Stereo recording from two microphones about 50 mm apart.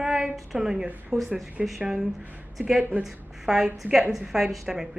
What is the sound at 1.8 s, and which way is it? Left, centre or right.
Speech, centre.